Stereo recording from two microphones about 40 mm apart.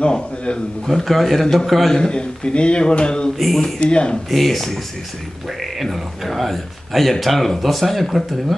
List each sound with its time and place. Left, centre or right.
0.0 s a man's voice: left
0.8 s a man's voice: centre
2.0 s speech: left
3.3 s a man's voice: centre
3.8 s speech: left
4.3 s a man's voice: centre